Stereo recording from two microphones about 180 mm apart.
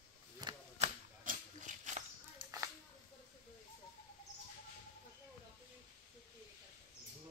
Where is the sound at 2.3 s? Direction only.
20° right (ahead or behind).